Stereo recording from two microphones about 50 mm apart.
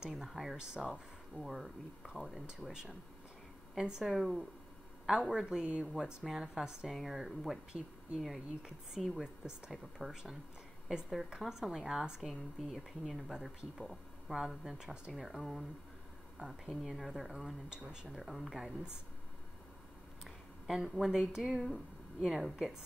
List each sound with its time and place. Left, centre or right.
0.0 s speech: centre
0.7 s speech: right
1.3 s speech: centre
7.7 s speech: centre
20.2 s speech: centre